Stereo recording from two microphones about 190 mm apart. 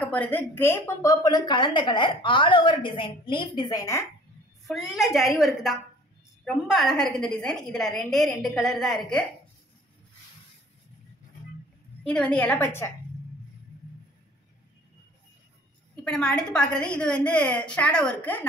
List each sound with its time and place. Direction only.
0.0 s a woman's voice: 10° left (ahead or behind)
4.6 s a woman's voice: centre (ahead or behind)
12.1 s a woman's voice: 5° left (ahead or behind)
16.0 s a woman's voice: 5° left (ahead or behind)